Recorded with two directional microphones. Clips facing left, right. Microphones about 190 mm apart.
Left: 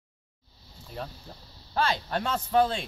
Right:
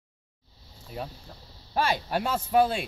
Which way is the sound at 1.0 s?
5° right (ahead or behind).